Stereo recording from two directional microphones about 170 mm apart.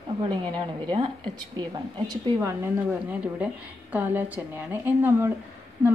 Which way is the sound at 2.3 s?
10° right (ahead or behind).